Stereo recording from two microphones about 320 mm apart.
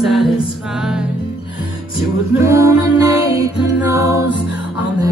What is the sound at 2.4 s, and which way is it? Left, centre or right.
Music, centre.